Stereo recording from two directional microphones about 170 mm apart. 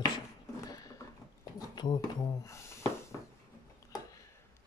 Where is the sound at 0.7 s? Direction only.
20° left (ahead or behind).